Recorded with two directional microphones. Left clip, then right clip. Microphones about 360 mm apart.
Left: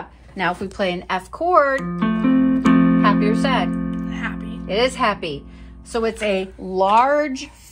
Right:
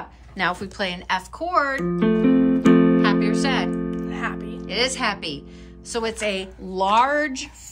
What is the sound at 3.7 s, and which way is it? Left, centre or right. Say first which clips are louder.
Music: even; left.